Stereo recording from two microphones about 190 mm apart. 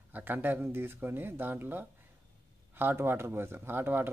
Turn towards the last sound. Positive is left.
turn(degrees=-10)  # may be behind; listen again after turning